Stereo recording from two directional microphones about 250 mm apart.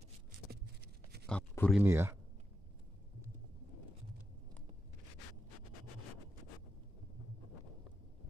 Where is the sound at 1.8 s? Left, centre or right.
Centre.